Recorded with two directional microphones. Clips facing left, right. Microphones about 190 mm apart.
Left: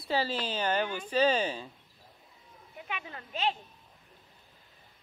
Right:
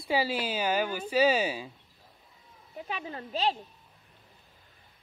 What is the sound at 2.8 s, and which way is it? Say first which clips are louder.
Speech: right 4 dB; 35° right (ahead or behind).